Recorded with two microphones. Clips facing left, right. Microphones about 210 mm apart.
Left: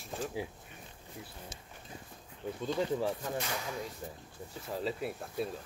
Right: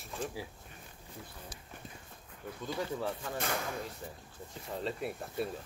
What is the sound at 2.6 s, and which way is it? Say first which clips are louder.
Speech: left 4 dB; 20° left (ahead or behind).